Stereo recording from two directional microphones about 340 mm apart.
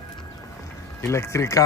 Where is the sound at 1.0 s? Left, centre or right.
Centre.